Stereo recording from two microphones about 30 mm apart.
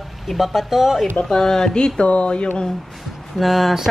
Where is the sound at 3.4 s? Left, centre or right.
Centre.